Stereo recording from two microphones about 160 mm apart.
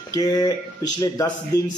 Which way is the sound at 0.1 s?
25° left (ahead or behind).